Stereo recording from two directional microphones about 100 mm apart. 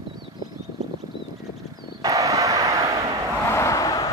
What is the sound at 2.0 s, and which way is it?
Vehicle, 35° right (ahead or behind).